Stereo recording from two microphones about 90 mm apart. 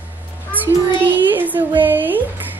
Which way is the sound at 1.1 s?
20° right (ahead or behind).